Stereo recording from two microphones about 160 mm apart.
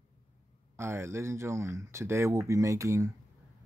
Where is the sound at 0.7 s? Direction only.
15° right (ahead or behind).